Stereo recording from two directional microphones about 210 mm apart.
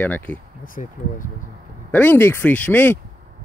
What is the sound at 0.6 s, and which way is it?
Speech, 40° left (ahead or behind).